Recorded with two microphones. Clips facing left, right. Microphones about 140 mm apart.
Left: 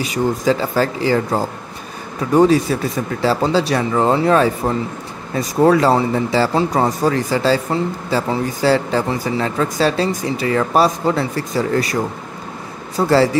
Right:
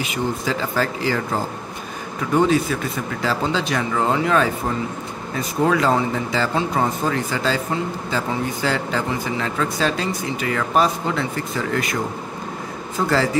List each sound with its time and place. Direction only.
0.0 s speech: 35° left (ahead or behind)
2.3 s speech: 35° left (ahead or behind)